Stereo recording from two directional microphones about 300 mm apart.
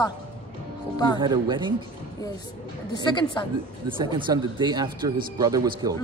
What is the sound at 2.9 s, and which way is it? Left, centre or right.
Speech, centre.